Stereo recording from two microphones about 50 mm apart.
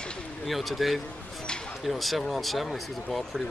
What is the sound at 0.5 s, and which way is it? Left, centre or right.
Speech, centre.